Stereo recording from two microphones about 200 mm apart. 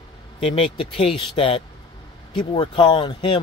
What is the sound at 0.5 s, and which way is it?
Speech, 25° left (ahead or behind).